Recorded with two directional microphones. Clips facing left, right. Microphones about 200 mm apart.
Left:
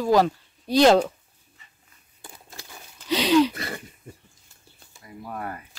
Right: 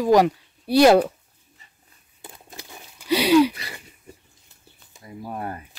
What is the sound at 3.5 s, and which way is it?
Throat clearing, 50° left (ahead or behind).